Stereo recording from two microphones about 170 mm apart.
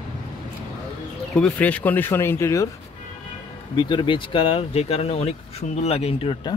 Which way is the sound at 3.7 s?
25° left (ahead or behind).